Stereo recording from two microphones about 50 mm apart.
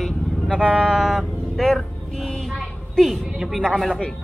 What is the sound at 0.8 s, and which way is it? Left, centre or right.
A woman's voice, centre.